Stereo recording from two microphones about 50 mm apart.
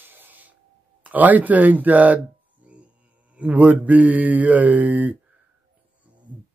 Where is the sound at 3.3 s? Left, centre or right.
Right.